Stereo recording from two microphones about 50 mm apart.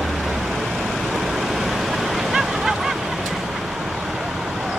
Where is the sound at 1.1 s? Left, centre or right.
Centre.